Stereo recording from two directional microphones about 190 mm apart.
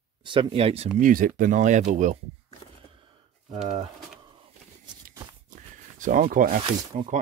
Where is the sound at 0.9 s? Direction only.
45° right (ahead or behind).